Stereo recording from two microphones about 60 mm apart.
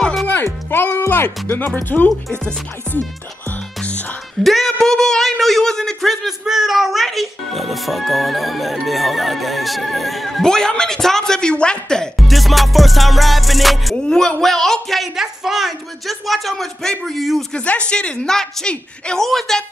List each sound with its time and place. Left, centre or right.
0.0 s music: centre
0.7 s speech: left
4.4 s a man's voice: centre
6.2 s speech: centre
12.3 s speech: centre
14.0 s speech: centre
17.5 s a man's voice: centre